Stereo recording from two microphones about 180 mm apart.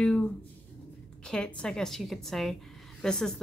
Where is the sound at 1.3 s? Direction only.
5° left (ahead or behind).